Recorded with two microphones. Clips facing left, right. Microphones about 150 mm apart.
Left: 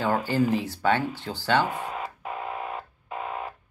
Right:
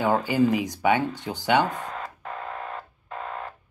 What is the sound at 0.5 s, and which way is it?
Speech, 15° right (ahead or behind).